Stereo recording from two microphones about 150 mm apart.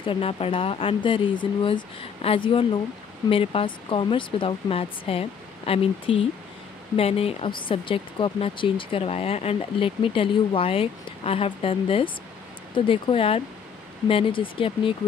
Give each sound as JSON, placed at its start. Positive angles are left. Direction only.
{"t": 0.0, "sound": "speech", "side_deg": 40}